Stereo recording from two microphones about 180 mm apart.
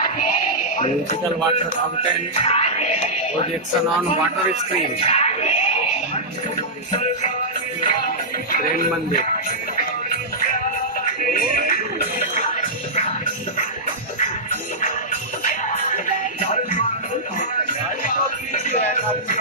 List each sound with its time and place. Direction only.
2.4 s music: 35° left (ahead or behind)
5.0 s speech: 35° left (ahead or behind)
6.9 s music: 40° left (ahead or behind)
18.0 s music: 45° left (ahead or behind)